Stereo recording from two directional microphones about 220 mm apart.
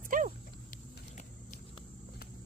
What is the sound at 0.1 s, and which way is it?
Dog, 40° right (ahead or behind).